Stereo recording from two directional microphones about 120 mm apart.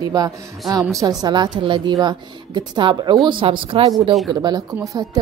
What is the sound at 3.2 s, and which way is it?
Speech, 50° right (ahead or behind).